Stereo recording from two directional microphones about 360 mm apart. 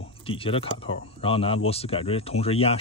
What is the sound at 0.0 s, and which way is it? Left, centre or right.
Speech, centre.